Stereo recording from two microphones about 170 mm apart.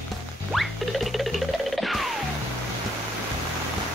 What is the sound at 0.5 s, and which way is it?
Music, centre (ahead or behind).